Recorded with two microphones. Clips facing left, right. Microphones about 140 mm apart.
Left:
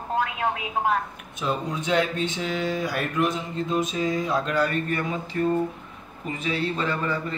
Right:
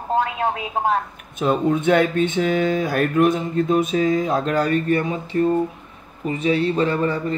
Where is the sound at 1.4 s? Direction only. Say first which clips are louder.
Right 9 dB; 55° right (ahead or behind).